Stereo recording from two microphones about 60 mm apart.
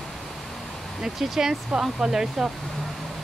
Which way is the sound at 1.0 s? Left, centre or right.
Centre.